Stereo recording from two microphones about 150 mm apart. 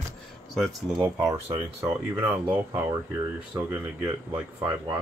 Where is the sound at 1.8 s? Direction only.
15° right (ahead or behind).